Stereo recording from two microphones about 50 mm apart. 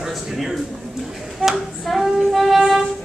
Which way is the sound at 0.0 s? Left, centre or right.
Centre.